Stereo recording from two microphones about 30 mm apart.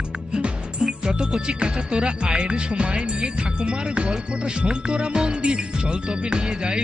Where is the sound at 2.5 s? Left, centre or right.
Right.